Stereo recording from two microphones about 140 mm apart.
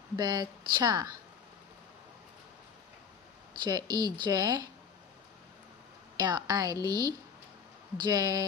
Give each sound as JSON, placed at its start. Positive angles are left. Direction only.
{"t": 0.1, "sound": "speech", "side_deg": -30}
{"t": 3.7, "sound": "speech", "side_deg": -25}
{"t": 6.1, "sound": "speech", "side_deg": -30}